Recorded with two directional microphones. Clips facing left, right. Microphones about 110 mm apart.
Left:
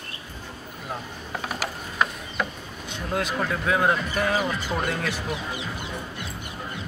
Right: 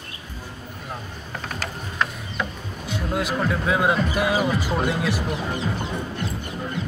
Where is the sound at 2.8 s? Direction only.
5° right (ahead or behind).